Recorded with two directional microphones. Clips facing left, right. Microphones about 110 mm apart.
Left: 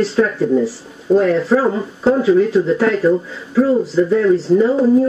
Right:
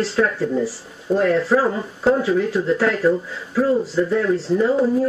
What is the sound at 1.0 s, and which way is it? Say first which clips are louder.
Speech: left 4 dB; 5° left (ahead or behind).